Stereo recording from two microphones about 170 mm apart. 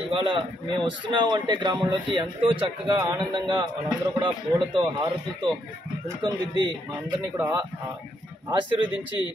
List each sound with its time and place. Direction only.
0.1 s speech: 30° right (ahead or behind)